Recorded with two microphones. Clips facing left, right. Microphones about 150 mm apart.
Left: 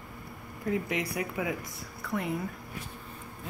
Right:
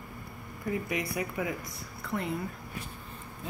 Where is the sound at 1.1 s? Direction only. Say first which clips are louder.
Even; 15° left (ahead or behind).